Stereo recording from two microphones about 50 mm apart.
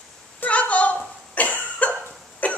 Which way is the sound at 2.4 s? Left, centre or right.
Left.